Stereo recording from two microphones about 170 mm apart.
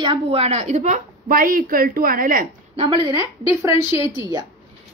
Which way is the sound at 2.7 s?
25° right (ahead or behind).